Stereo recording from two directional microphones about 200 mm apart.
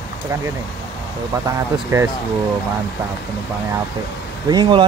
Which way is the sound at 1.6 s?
15° right (ahead or behind).